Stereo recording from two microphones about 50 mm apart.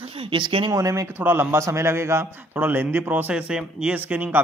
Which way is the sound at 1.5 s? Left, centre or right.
Right.